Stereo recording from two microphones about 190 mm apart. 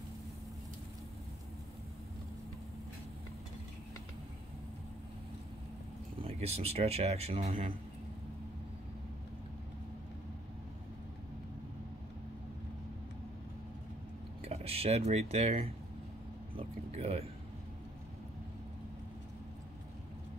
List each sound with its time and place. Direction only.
6.1 s speech: 30° right (ahead or behind)
14.4 s speech: 30° right (ahead or behind)